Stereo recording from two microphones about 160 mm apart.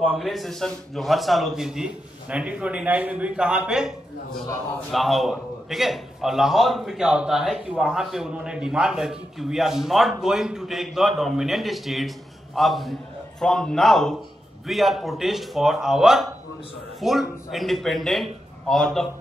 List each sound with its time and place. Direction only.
0.0 s a man's voice: 5° right (ahead or behind)
4.9 s a man's voice: centre (ahead or behind)